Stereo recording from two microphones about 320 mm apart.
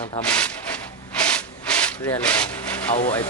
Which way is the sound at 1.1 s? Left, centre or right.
Centre.